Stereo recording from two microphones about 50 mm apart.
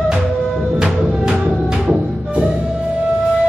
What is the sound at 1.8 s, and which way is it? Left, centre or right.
Music, centre.